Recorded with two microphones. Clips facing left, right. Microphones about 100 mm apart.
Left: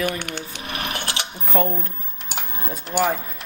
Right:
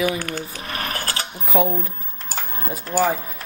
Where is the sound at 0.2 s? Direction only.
40° right (ahead or behind).